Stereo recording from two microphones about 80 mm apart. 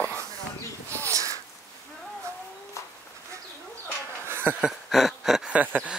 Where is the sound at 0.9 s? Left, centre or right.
Right.